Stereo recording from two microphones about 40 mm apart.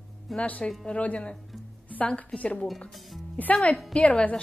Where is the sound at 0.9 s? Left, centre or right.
Left.